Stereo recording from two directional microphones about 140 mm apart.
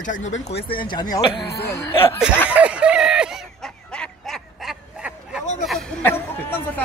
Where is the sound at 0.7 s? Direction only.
35° left (ahead or behind).